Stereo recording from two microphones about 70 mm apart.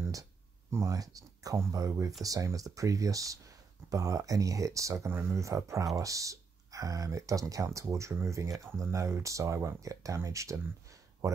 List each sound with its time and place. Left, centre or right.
0.7 s speech: right
0.9 s speech: right